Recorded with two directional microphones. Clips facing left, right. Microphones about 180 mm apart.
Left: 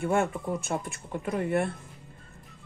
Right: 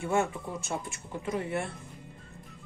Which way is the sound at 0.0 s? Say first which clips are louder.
Left 2 dB; 55° left (ahead or behind).